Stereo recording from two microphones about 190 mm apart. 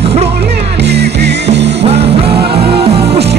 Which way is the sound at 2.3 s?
60° right (ahead or behind).